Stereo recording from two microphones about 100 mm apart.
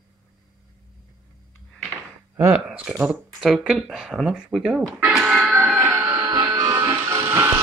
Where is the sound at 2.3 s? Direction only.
15° right (ahead or behind).